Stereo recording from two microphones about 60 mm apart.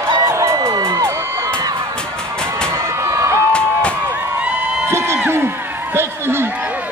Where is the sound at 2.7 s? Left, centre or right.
Right.